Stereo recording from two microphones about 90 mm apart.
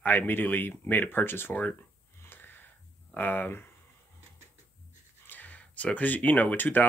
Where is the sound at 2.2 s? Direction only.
25° left (ahead or behind).